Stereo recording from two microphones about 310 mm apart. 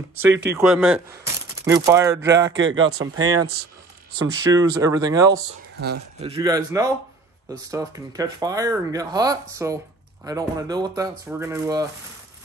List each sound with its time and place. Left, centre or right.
0.1 s speech: right
0.5 s speech: centre
2.5 s speech: right
4.3 s speech: centre